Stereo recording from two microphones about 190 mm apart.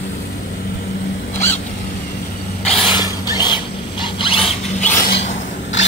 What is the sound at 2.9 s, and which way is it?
Printer, 25° left (ahead or behind).